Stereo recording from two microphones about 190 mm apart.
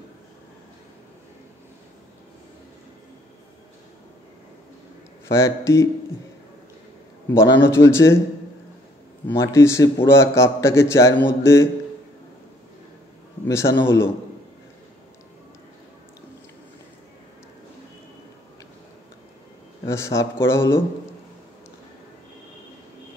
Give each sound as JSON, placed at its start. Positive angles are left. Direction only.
{"t": 5.3, "sound": "a man's voice", "side_deg": 15}
{"t": 7.2, "sound": "a man's voice", "side_deg": 15}
{"t": 9.4, "sound": "a man's voice", "side_deg": 15}
{"t": 13.5, "sound": "a man's voice", "side_deg": 15}
{"t": 19.9, "sound": "a man's voice", "side_deg": 15}